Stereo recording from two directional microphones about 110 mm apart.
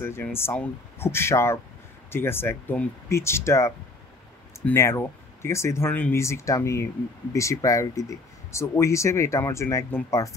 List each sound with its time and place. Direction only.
0.0 s speech: 20° left (ahead or behind)
6.2 s speech: 25° left (ahead or behind)